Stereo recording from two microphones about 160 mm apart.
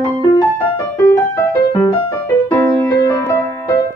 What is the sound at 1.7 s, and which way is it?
Music, 25° left (ahead or behind).